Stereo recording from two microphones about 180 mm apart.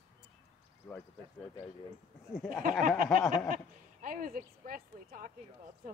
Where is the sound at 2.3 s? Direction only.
Centre (ahead or behind).